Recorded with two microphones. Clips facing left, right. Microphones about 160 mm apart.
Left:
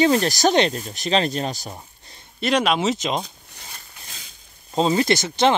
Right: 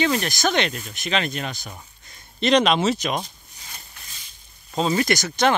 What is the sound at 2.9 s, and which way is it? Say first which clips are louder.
Speech: even; 20° left (ahead or behind).